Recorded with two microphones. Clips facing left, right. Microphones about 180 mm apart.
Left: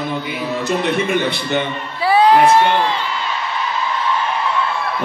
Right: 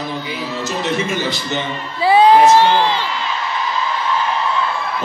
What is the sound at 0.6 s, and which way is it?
A man's voice, 60° left (ahead or behind).